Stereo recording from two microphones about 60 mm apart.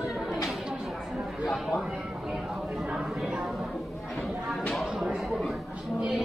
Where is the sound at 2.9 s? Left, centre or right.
Centre.